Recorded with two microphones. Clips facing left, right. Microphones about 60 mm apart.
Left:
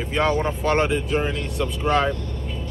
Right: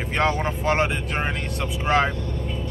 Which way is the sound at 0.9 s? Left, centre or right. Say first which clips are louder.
Left 4 dB; right.